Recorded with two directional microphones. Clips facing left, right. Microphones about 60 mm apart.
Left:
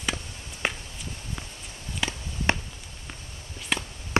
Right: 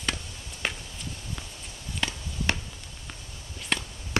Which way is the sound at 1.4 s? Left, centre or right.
Centre.